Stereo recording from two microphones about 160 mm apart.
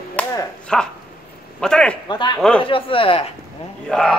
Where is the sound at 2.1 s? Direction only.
25° left (ahead or behind).